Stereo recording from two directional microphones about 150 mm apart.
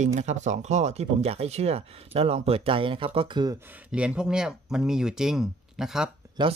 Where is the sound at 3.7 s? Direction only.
10° right (ahead or behind).